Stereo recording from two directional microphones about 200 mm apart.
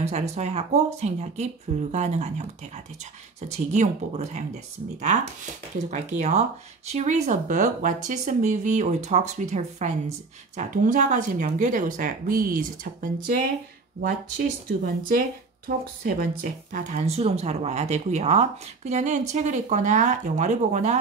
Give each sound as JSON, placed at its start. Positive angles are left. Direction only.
{"t": 0.0, "sound": "speech", "side_deg": -35}
{"t": 3.4, "sound": "speech", "side_deg": -35}
{"t": 16.0, "sound": "speech", "side_deg": -45}